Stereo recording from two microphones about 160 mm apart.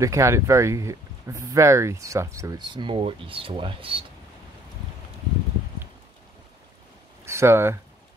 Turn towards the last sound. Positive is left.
turn(degrees=-15)  # may be behind; listen again after turning